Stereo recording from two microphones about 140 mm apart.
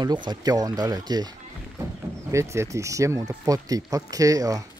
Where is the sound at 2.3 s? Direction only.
20° right (ahead or behind).